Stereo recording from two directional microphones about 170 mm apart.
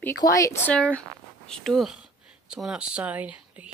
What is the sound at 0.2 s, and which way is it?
Speech, 20° left (ahead or behind).